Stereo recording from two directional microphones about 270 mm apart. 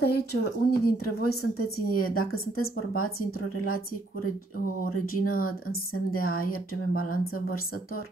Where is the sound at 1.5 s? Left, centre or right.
Left.